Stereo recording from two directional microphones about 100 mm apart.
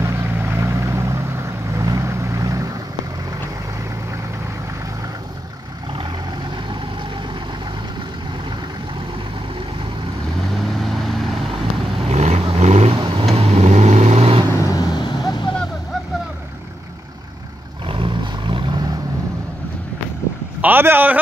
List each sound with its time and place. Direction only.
0.0 s vehicle: 25° right (ahead or behind)
10.8 s vehicle: centre (ahead or behind)
12.1 s vehicle: 90° right
14.5 s vehicle: 35° left (ahead or behind); by 15.5 s 50° left (ahead or behind)
17.8 s vehicle: 55° right (ahead or behind)
20.6 s a sound: 20° right (ahead or behind)